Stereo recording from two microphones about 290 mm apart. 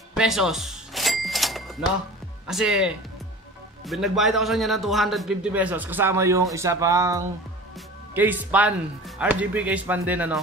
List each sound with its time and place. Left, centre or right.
0.1 s music: centre
2.4 s a man's voice: centre